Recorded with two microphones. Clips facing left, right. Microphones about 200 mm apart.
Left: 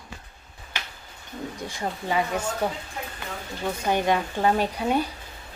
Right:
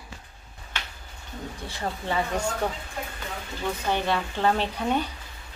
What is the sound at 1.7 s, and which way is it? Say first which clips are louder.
Speech: left 1 dB; 15° left (ahead or behind).